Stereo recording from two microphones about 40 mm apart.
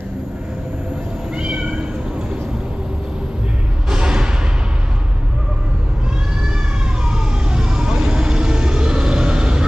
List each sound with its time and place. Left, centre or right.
1.3 s cat: right
3.9 s a sound: centre
7.1 s vehicle: centre